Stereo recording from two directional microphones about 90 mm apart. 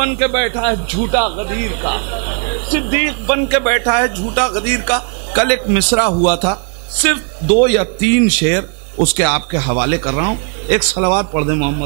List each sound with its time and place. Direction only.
0.0 s a man's voice: 20° right (ahead or behind)